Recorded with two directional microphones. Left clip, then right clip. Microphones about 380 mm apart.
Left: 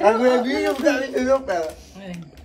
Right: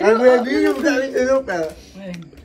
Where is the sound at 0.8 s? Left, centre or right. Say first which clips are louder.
Right 2 dB; centre.